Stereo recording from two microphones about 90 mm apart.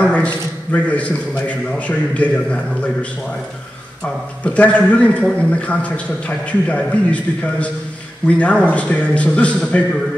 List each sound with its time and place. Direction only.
0.0 s a sound: 15° left (ahead or behind)
0.7 s a man's voice: 15° left (ahead or behind)
4.6 s a man's voice: 15° left (ahead or behind)